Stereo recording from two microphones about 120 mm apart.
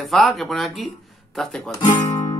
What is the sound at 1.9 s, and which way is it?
Music, 30° left (ahead or behind).